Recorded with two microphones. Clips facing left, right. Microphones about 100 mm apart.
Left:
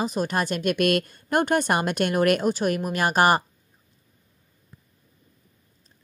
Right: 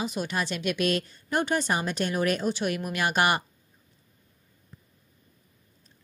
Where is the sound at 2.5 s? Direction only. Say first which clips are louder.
Left 5 dB; 45° left (ahead or behind).